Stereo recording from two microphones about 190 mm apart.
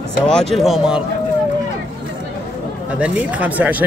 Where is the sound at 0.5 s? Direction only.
Centre (ahead or behind).